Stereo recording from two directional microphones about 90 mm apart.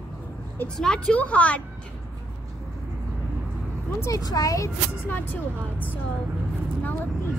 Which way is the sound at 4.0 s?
40° left (ahead or behind).